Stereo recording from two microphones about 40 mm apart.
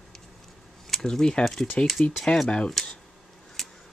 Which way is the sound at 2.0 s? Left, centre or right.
Left.